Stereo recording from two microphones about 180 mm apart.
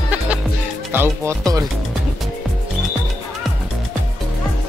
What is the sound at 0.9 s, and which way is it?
Speech, 15° right (ahead or behind).